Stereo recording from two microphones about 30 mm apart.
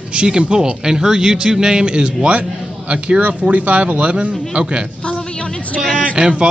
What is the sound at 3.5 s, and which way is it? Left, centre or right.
Speech, right.